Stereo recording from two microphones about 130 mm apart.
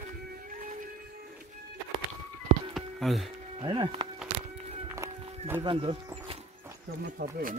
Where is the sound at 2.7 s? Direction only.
Centre (ahead or behind).